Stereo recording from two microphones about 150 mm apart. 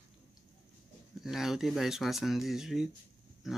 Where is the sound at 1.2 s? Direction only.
Centre (ahead or behind).